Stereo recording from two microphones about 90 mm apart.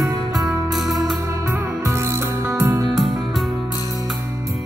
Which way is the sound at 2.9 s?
Centre (ahead or behind).